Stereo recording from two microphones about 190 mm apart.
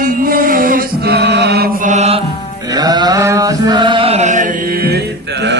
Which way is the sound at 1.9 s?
35° right (ahead or behind).